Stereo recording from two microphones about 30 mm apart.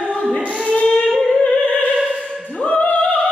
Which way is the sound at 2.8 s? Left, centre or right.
Left.